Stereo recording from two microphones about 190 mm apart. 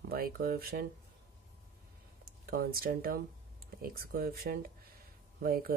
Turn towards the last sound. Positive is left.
turn(degrees=-50)  # may be behind; listen again after turning